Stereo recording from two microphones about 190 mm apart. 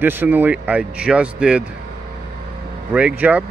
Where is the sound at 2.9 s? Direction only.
10° right (ahead or behind).